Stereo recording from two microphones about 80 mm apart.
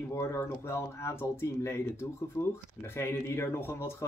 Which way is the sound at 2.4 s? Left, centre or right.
Left.